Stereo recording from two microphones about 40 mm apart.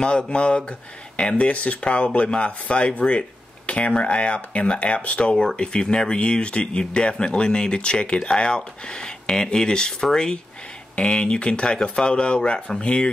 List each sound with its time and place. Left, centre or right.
0.0 s speech: left